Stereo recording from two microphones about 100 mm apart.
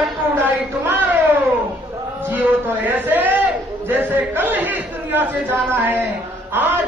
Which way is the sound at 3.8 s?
20° right (ahead or behind).